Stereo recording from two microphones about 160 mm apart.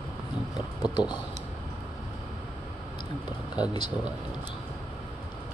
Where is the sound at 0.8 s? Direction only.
25° left (ahead or behind).